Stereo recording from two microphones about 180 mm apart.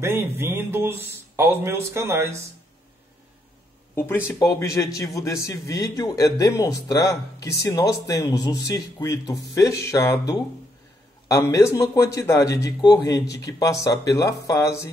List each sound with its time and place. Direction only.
0.0 s speech: 15° right (ahead or behind)
3.9 s a man's voice: 10° left (ahead or behind)